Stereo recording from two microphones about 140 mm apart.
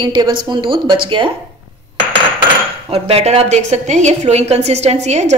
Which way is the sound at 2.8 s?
45° right (ahead or behind).